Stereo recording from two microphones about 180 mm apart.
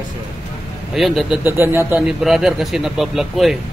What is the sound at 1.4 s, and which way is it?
Speech, 10° right (ahead or behind).